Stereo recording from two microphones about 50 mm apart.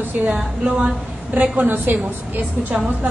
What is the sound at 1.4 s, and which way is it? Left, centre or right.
A woman's voice, right.